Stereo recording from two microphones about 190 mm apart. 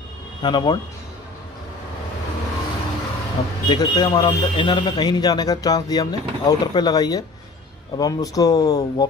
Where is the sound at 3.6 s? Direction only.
25° left (ahead or behind).